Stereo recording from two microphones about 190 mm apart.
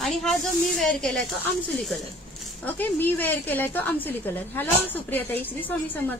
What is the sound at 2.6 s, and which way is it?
A woman's voice, 10° left (ahead or behind).